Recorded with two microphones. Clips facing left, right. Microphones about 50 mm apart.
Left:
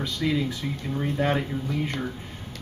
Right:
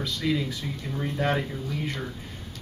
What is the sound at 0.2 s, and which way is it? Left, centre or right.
Speech, centre.